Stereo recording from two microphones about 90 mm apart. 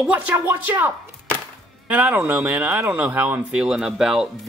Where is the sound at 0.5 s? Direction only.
20° right (ahead or behind).